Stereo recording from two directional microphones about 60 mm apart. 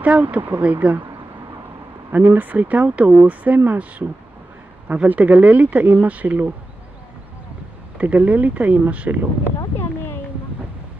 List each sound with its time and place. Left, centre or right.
0.0 s speech: right
2.1 s speech: right
8.0 s speech: right